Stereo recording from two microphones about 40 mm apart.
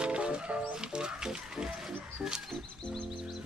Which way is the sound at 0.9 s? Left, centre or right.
Right.